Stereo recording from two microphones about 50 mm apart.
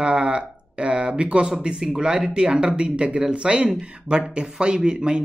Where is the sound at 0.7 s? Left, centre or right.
Centre.